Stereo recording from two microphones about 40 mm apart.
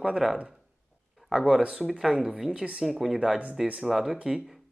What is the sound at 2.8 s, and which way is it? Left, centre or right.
Speech, centre.